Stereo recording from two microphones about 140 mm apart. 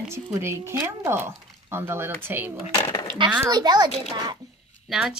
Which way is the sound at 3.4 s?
30° right (ahead or behind).